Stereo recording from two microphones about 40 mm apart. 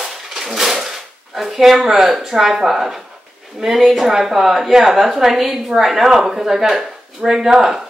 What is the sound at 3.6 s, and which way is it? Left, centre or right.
A woman's voice, centre.